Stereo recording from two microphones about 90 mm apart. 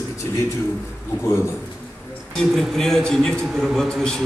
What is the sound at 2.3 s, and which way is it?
A man's voice, 5° left (ahead or behind).